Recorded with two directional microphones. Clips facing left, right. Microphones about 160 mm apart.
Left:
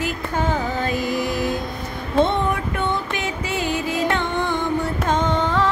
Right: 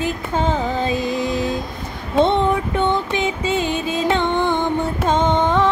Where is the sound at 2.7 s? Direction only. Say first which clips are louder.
Right 5 dB; 25° right (ahead or behind).